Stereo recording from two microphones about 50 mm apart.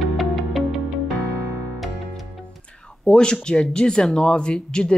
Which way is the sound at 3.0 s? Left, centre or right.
Centre.